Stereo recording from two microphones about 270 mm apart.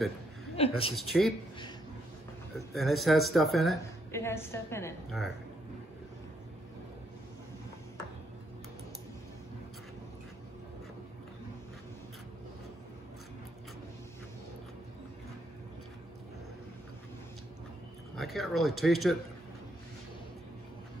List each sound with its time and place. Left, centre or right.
0.6 s a woman's voice: left
0.9 s speech: centre
2.5 s a woman's voice: centre
18.1 s speech: centre